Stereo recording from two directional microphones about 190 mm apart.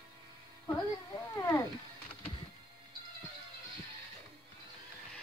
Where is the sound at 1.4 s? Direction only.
15° left (ahead or behind).